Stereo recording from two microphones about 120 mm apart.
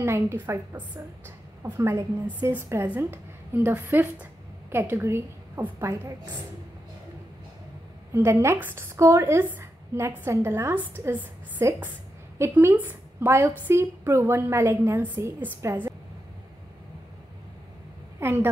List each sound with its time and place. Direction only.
0.0 s a woman's voice: 20° right (ahead or behind)
8.1 s a woman's voice: 25° right (ahead or behind)
18.2 s a woman's voice: 20° right (ahead or behind)